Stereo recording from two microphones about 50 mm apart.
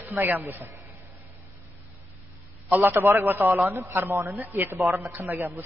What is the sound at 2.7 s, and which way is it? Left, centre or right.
Speech, right.